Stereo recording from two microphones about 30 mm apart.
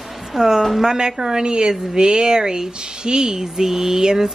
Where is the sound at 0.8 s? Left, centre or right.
Right.